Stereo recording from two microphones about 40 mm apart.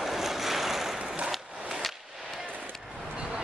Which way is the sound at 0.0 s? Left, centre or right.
Centre.